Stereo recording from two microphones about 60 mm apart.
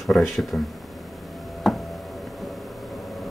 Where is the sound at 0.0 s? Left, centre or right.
Centre.